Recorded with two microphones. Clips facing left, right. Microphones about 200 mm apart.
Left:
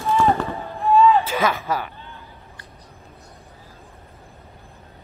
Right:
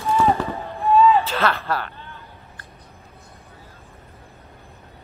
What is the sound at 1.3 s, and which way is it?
Speech, 10° left (ahead or behind).